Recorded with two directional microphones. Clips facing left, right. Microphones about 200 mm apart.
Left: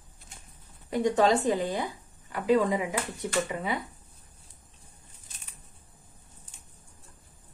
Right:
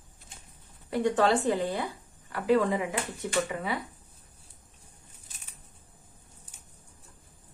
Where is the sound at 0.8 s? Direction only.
15° left (ahead or behind).